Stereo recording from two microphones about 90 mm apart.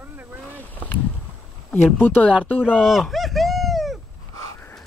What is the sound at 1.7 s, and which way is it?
Speech, 20° left (ahead or behind).